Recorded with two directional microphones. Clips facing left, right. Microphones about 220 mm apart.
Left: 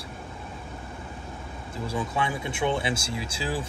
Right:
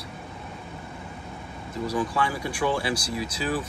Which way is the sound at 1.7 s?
25° left (ahead or behind).